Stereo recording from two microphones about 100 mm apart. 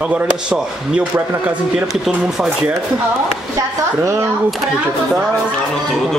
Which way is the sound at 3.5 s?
30° right (ahead or behind).